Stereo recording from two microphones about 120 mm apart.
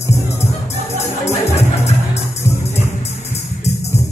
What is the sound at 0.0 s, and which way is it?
Music, 20° left (ahead or behind).